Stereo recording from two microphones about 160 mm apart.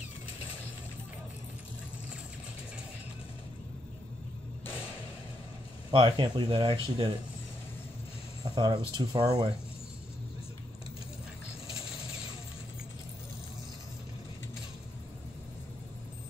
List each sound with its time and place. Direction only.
5.9 s speech: 30° right (ahead or behind)
8.5 s speech: 25° right (ahead or behind)